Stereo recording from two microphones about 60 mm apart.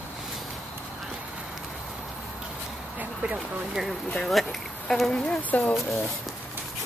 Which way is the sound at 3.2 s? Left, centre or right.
Centre.